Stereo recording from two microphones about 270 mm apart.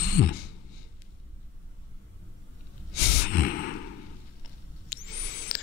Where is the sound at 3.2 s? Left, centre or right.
Left.